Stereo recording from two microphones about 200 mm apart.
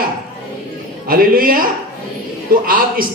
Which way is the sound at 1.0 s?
45° right (ahead or behind).